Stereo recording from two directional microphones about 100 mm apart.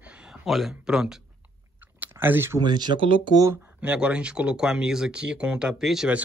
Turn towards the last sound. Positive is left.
turn(degrees=-5)  # may be behind; listen again after turning